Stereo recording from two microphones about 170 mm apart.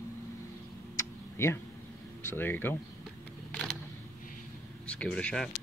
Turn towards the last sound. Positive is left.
turn(degrees=5)  # may be behind; listen again after turning